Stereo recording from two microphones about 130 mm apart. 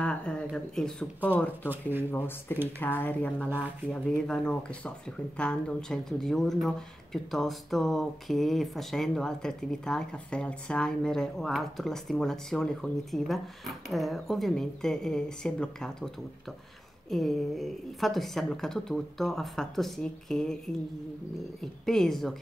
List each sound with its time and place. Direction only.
0.0 s speech: 10° left (ahead or behind)
1.7 s speech: 15° right (ahead or behind)
2.0 s speech: 15° left (ahead or behind)
17.1 s speech: centre (ahead or behind)
21.8 s speech: centre (ahead or behind)